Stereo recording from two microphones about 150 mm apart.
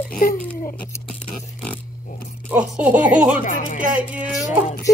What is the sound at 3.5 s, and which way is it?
Speech, 60° left (ahead or behind).